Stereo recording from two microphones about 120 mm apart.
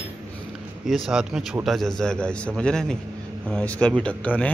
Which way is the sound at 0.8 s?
Centre (ahead or behind).